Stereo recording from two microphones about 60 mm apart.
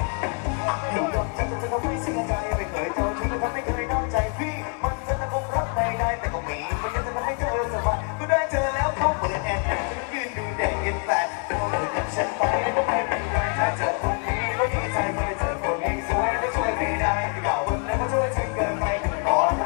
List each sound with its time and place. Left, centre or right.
0.2 s music: centre
2.8 s music: centre
5.5 s music: centre
7.2 s music: centre